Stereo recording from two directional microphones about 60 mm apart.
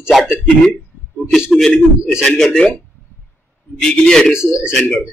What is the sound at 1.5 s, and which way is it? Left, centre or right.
A man's voice, centre.